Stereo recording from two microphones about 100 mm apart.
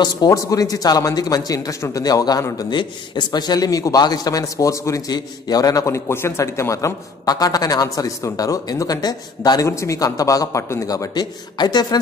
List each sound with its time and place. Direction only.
0.0 s a man's voice: 40° left (ahead or behind)
9.7 s a man's voice: 30° left (ahead or behind)